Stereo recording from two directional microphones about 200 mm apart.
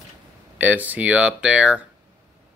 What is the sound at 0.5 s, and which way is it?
Speech, 10° right (ahead or behind).